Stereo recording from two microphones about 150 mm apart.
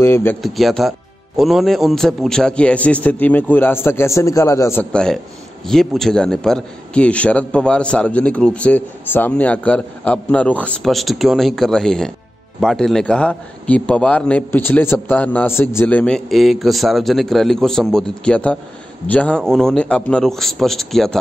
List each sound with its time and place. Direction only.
0.0 s a man's voice: 15° left (ahead or behind)
0.4 s a man's voice: centre (ahead or behind); by 4.8 s 20° left (ahead or behind)
4.9 s a man's voice: 5° left (ahead or behind)